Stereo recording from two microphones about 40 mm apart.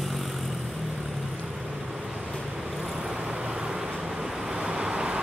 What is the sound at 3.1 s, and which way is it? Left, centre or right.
Vehicle, right.